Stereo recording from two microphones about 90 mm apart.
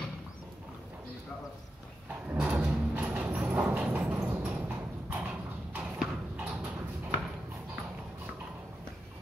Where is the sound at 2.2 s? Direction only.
10° right (ahead or behind).